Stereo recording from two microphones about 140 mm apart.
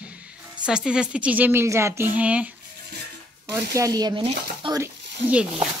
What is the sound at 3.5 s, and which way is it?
Speech, 25° right (ahead or behind).